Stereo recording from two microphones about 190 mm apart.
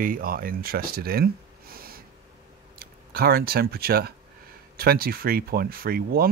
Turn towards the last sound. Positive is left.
turn(degrees=-50)  # may be behind; listen again after turning